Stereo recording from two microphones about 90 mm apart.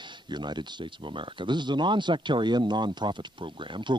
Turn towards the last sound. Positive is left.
turn(degrees=-55)  # may be behind; listen again after turning